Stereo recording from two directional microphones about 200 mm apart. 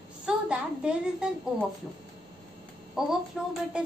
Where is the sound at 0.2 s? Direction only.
5° right (ahead or behind).